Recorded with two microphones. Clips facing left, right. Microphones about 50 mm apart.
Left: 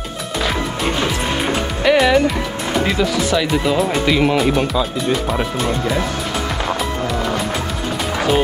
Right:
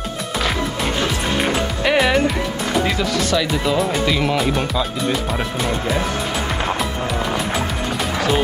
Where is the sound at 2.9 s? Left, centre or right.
Centre.